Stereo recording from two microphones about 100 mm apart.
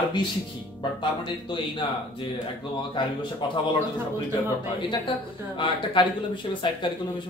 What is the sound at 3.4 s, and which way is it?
Speech, 50° left (ahead or behind).